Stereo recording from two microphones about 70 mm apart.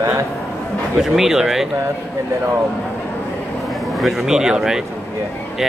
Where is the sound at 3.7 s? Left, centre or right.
Centre.